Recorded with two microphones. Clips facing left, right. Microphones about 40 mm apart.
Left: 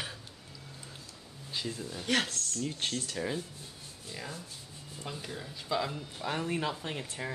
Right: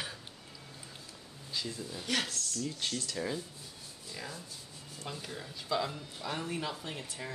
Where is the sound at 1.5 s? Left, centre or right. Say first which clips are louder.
Left 2 dB; left.